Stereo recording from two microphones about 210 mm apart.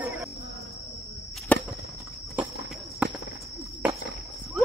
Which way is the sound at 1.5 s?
5° left (ahead or behind).